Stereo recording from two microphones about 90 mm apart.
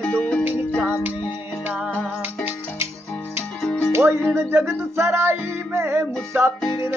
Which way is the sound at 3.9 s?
25° right (ahead or behind).